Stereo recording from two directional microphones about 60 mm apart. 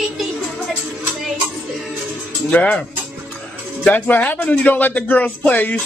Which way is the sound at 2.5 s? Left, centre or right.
Left.